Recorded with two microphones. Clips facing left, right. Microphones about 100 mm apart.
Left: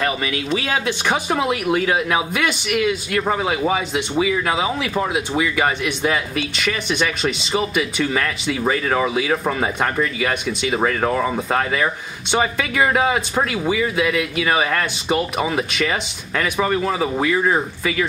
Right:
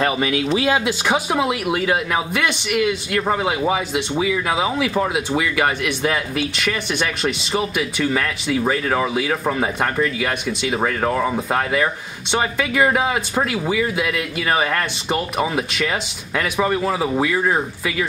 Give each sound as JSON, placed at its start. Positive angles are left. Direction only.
{"t": 0.0, "sound": "speech", "side_deg": -25}
{"t": 0.5, "sound": "speech", "side_deg": -10}